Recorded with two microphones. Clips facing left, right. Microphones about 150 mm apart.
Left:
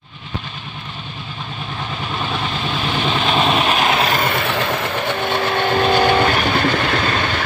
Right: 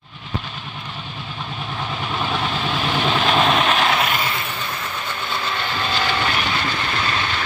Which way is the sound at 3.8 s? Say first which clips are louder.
Left 2 dB; 25° left (ahead or behind).